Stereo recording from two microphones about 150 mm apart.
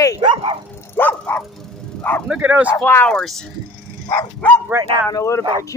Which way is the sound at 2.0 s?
10° left (ahead or behind).